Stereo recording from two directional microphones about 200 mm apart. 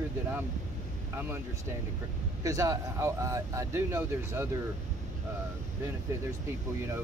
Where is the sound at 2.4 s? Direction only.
15° right (ahead or behind).